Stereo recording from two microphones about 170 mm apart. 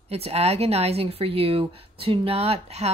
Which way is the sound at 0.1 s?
35° right (ahead or behind).